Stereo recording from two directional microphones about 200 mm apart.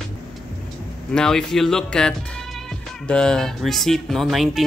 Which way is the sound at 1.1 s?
5° left (ahead or behind).